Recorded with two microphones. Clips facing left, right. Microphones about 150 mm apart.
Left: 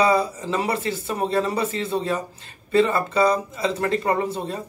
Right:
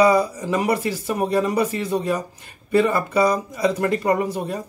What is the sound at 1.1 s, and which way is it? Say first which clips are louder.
Speech: right 2 dB; 15° right (ahead or behind).